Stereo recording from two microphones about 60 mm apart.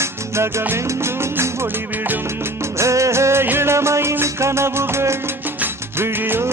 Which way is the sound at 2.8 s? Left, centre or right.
Right.